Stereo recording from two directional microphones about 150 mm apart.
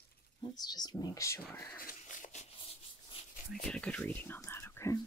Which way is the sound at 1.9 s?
60° left (ahead or behind).